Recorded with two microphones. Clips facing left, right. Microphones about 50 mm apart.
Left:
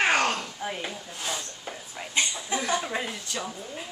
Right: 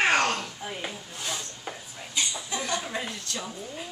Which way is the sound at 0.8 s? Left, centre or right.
Centre.